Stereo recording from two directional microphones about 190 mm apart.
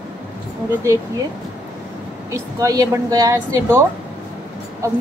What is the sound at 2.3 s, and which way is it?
A woman's voice, 15° right (ahead or behind).